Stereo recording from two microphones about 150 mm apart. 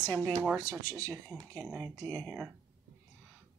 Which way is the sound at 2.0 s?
15° left (ahead or behind).